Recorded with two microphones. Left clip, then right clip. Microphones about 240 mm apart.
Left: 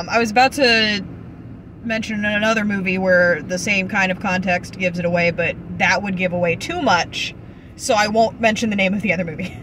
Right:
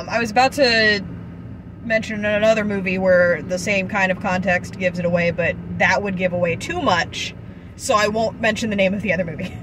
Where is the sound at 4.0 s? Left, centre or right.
Centre.